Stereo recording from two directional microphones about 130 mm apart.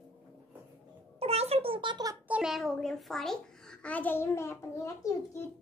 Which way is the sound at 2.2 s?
5° right (ahead or behind).